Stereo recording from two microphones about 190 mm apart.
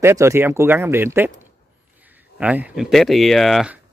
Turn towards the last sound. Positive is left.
turn(degrees=0)  # may be behind; listen again after turning